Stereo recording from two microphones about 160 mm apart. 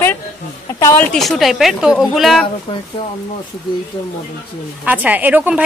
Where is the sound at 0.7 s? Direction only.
15° left (ahead or behind).